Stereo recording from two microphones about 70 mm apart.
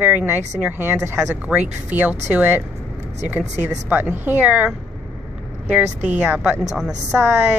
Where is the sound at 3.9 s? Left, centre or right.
Right.